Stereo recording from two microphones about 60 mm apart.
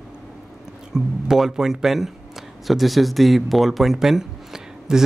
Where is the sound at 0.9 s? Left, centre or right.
Centre.